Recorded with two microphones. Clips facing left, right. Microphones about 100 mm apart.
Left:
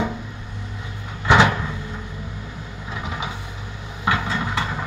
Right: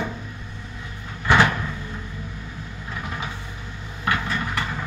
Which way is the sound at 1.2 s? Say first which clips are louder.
Left 2 dB; 20° left (ahead or behind).